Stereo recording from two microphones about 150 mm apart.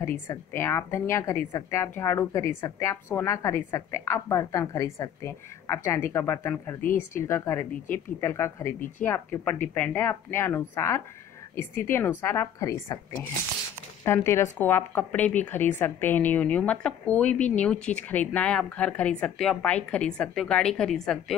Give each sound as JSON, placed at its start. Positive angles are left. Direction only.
{"t": 0.0, "sound": "speech", "side_deg": 20}
{"t": 14.0, "sound": "speech", "side_deg": 15}